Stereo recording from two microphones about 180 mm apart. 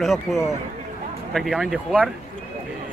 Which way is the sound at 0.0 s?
Centre (ahead or behind).